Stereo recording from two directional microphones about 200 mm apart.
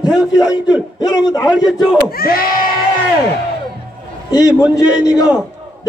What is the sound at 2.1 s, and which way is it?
Speech, 50° left (ahead or behind).